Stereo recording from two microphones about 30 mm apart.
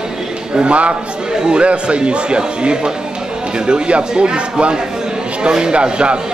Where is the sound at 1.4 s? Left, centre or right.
Right.